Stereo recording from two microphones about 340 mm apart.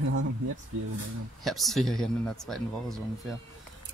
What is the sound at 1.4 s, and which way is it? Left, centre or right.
Speech, centre.